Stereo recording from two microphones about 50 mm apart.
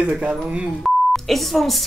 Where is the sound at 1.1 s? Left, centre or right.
Centre.